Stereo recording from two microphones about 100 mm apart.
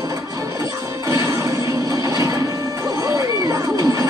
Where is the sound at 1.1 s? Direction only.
30° right (ahead or behind).